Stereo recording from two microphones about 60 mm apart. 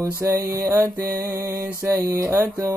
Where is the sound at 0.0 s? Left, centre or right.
Right.